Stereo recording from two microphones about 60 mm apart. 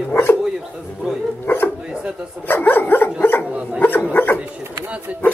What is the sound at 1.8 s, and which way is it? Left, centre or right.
Speech, centre.